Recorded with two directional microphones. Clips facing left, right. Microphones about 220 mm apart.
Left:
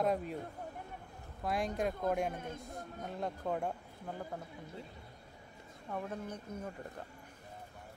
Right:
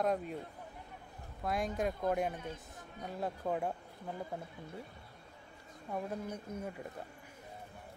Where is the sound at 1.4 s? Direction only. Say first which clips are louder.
Even; centre (ahead or behind).